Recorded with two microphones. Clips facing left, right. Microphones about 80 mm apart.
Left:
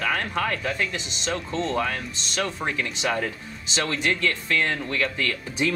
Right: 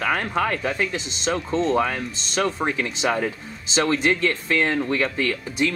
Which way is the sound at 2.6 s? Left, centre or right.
Centre.